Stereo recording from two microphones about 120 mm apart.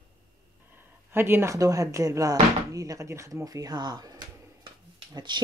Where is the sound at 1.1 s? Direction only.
20° right (ahead or behind).